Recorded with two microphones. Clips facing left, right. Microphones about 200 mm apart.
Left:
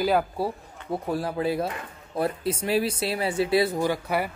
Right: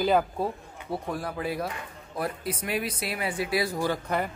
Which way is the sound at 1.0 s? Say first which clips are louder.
Left 7 dB; 30° left (ahead or behind).